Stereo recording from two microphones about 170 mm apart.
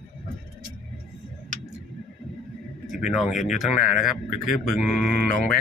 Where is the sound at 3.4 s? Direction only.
5° right (ahead or behind).